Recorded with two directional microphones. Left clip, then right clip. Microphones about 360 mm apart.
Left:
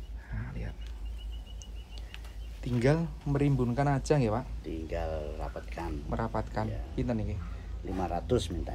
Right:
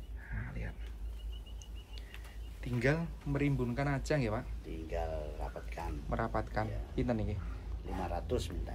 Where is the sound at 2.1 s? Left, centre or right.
Centre.